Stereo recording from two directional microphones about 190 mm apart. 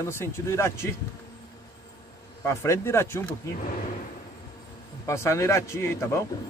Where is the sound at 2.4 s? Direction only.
15° left (ahead or behind).